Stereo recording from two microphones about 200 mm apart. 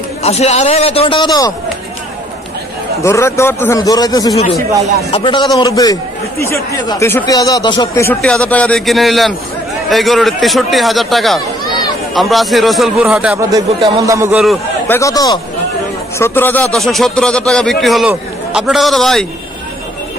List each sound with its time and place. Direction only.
0.2 s a man's voice: 30° left (ahead or behind)
3.0 s a man's voice: 15° left (ahead or behind); by 13.4 s 5° right (ahead or behind)
13.4 s a man's voice: 20° right (ahead or behind)
14.9 s a man's voice: 15° left (ahead or behind)